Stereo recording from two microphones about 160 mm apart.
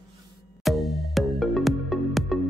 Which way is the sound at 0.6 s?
Centre (ahead or behind).